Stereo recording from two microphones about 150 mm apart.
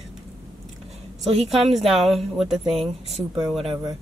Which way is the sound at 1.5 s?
Centre (ahead or behind).